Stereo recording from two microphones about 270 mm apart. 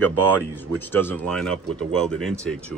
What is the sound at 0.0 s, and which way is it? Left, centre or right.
Speech, right.